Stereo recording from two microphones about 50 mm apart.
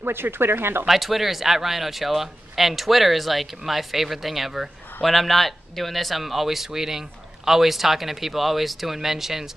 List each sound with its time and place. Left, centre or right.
0.0 s speech: right
0.8 s speech: centre